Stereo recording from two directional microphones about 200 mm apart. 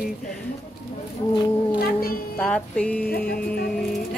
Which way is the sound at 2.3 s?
5° left (ahead or behind).